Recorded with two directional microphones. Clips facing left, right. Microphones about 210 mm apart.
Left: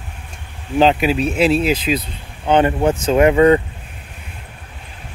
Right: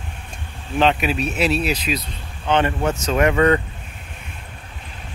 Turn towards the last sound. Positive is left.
turn(degrees=25)  # may be behind; listen again after turning